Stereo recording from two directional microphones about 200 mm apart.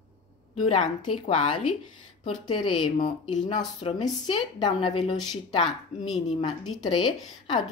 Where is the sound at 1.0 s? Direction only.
25° left (ahead or behind).